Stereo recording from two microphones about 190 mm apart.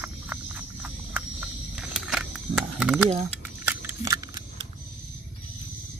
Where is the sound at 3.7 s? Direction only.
10° right (ahead or behind).